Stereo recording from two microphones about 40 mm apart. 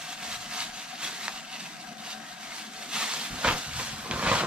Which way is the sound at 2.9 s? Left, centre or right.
Right.